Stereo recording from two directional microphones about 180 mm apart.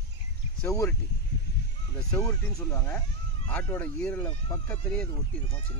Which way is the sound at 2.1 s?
20° left (ahead or behind).